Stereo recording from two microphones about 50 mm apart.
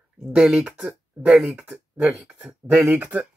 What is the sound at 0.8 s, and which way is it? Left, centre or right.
Speech, right.